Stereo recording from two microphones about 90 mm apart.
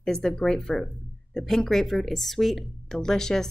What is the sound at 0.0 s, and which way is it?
Speech, 5° left (ahead or behind).